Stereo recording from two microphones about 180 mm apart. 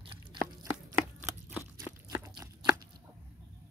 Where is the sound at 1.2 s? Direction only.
10° right (ahead or behind).